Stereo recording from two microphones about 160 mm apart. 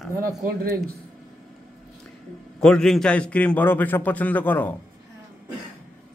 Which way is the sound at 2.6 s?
5° left (ahead or behind).